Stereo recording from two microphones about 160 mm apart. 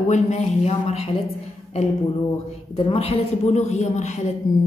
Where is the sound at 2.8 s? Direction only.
35° left (ahead or behind).